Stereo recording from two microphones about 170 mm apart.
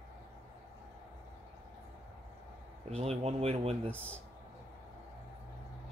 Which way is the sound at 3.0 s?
35° right (ahead or behind).